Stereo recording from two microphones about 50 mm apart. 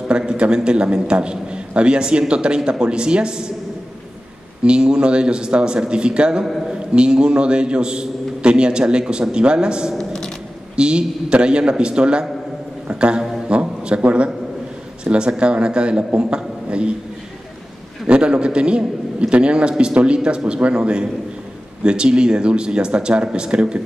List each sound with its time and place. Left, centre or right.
0.3 s a man's voice: centre
4.6 s a man's voice: centre
9.9 s a sound: centre
10.8 s a man's voice: centre
12.8 s music: right
13.5 s a sound: right
15.0 s a man's voice: right
18.0 s a man's voice: right